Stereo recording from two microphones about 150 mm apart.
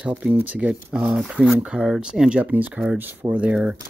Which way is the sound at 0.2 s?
10° right (ahead or behind).